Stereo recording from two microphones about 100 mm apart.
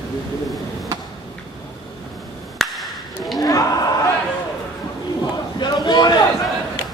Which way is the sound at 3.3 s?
40° left (ahead or behind).